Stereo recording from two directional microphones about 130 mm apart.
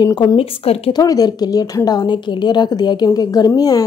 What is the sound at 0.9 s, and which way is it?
Speech, 30° left (ahead or behind).